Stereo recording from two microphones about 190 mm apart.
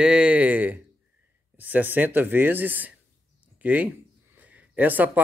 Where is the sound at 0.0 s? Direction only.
5° right (ahead or behind).